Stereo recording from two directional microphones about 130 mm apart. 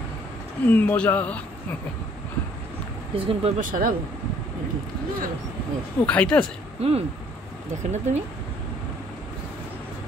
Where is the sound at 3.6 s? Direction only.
90° right.